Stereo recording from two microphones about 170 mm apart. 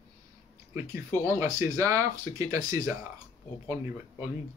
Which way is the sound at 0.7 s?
15° right (ahead or behind).